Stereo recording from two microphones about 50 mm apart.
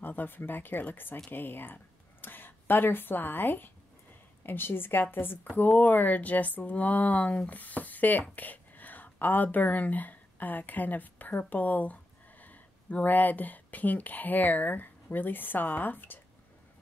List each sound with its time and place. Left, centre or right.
0.0 s speech: left